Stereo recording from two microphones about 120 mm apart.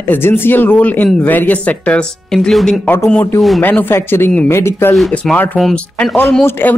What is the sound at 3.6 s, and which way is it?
Speech, 15° left (ahead or behind).